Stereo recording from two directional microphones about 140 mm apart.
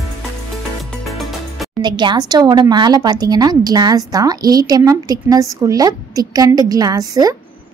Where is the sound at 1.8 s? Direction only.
30° right (ahead or behind).